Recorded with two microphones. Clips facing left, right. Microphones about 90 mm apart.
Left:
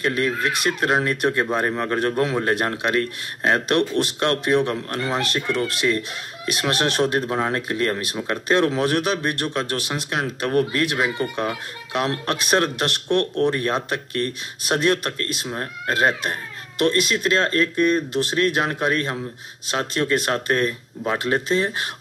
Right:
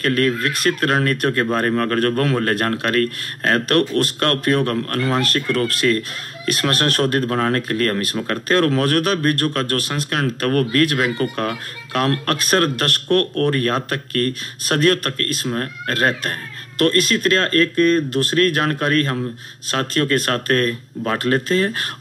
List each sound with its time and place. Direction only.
0.0 s speech: 15° left (ahead or behind)